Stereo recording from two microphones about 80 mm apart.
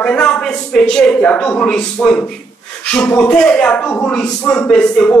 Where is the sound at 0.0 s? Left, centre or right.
Centre.